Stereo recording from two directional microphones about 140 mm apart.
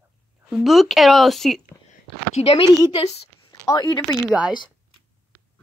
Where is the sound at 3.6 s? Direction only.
30° left (ahead or behind).